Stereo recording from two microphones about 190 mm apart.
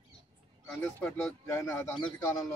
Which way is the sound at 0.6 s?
5° left (ahead or behind).